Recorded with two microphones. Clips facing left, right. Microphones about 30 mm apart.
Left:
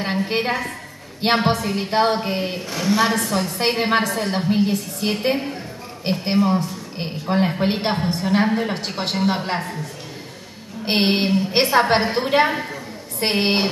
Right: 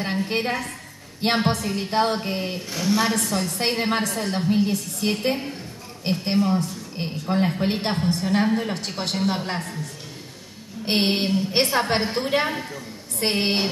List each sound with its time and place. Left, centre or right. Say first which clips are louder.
0.0 s a woman's voice: left 3 dB; centre
10.9 s a woman's voice: left 3 dB; centre